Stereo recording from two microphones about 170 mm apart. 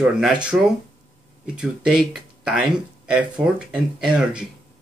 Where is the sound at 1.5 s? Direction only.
5° right (ahead or behind).